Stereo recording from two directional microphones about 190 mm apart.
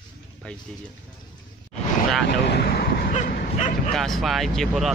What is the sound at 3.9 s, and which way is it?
Speech, centre (ahead or behind).